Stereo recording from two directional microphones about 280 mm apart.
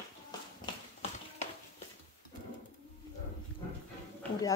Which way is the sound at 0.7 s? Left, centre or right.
Centre.